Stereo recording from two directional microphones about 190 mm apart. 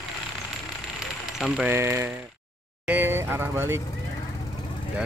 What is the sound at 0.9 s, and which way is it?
Speech, 5° right (ahead or behind).